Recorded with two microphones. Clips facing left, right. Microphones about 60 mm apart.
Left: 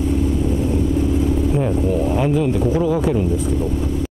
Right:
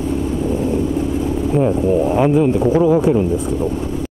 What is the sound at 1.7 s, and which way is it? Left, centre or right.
Speech, right.